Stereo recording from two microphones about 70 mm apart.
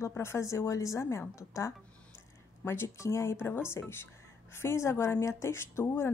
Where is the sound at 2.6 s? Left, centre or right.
Left.